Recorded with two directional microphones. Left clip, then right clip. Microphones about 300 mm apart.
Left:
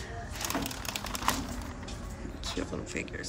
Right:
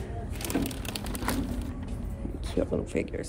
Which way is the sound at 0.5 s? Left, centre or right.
Right.